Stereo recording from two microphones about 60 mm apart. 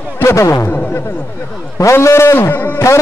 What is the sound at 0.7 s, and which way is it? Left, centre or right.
Speech, left.